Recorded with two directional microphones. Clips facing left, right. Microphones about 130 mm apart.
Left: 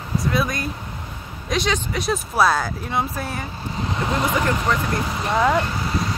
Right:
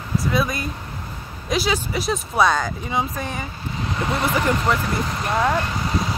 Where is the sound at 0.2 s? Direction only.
Centre (ahead or behind).